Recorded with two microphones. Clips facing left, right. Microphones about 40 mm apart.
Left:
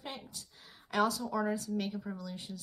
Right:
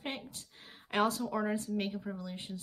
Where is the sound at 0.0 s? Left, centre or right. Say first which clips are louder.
Right 3 dB; right.